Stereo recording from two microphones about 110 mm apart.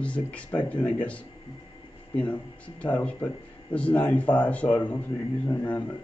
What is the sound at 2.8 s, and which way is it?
Speech, 10° left (ahead or behind).